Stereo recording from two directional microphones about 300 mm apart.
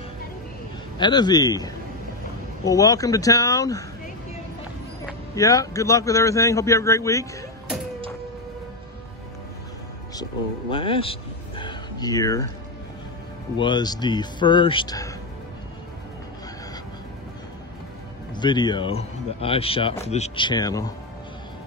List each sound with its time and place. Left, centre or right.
0.9 s speech: centre
5.0 s speech: centre
10.7 s speech: centre
13.6 s speech: centre
18.3 s speech: centre